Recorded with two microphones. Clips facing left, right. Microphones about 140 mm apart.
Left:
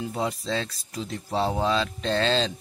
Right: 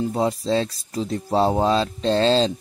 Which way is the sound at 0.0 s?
35° right (ahead or behind).